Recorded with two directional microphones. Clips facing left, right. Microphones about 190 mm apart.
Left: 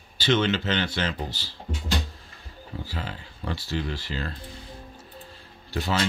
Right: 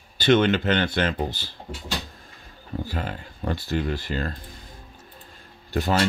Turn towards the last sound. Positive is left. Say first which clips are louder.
# right 4 dB
turn(degrees=-50)  # may be behind; listen again after turning